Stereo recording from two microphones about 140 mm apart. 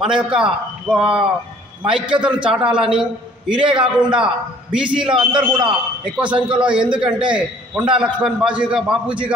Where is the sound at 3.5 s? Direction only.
35° right (ahead or behind).